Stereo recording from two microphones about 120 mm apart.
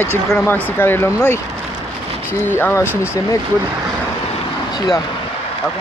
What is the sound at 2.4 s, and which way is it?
Speech, 20° left (ahead or behind).